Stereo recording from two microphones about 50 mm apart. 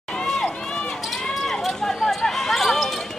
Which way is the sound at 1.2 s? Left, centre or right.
Centre.